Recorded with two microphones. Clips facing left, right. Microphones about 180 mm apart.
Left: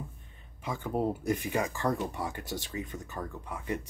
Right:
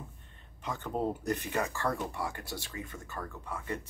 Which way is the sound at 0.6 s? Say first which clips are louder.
Left 2 dB; 10° left (ahead or behind).